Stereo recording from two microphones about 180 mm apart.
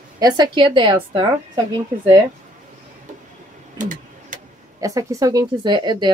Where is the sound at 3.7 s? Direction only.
45° right (ahead or behind).